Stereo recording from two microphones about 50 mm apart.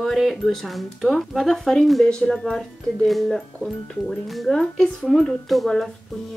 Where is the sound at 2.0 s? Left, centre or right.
Centre.